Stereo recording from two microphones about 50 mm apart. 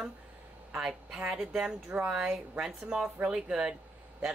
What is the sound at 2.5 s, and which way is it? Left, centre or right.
A woman's voice, centre.